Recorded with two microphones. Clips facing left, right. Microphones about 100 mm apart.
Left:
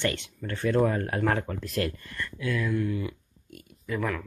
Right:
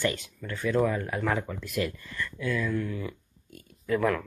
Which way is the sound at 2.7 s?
10° left (ahead or behind).